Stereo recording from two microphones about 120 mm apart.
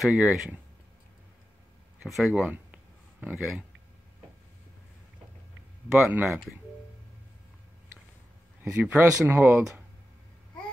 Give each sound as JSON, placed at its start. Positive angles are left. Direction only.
{"t": 0.0, "sound": "speech", "side_deg": -5}
{"t": 2.0, "sound": "speech", "side_deg": 0}
{"t": 2.5, "sound": "a sound", "side_deg": -10}
{"t": 6.0, "sound": "speech", "side_deg": -15}
{"t": 8.6, "sound": "speech", "side_deg": -20}